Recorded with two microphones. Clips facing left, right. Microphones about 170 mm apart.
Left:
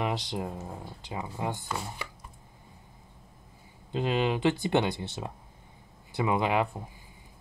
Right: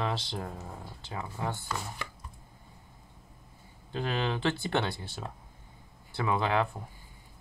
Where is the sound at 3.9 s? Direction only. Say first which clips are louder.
Left 4 dB; 20° left (ahead or behind).